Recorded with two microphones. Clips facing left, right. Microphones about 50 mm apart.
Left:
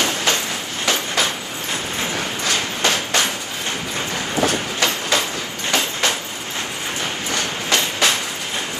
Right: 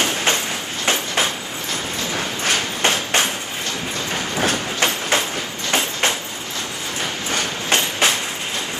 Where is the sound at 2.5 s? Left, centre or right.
Right.